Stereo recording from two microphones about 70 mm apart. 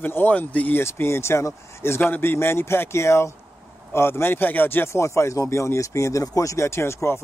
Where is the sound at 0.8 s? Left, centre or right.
Left.